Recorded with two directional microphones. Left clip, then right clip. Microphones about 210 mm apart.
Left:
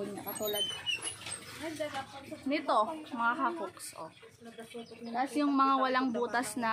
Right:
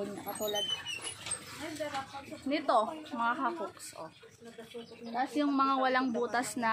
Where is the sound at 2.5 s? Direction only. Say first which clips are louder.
Right 1 dB; 10° right (ahead or behind).